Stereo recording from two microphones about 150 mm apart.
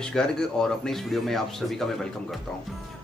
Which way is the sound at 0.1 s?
5° left (ahead or behind).